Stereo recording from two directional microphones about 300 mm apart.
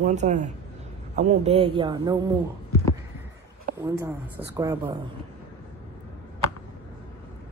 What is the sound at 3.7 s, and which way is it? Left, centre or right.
A man's voice, centre.